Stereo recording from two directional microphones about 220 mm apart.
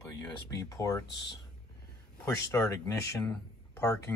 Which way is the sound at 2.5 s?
15° left (ahead or behind).